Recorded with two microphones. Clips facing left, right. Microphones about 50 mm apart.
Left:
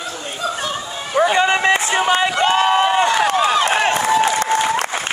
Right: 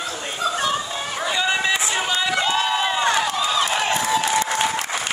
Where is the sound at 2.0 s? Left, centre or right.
Left.